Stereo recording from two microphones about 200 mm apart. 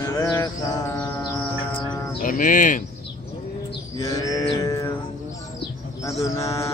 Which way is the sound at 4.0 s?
15° left (ahead or behind).